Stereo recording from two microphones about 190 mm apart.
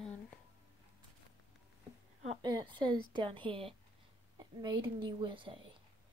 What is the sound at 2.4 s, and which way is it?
A woman's voice, 25° right (ahead or behind).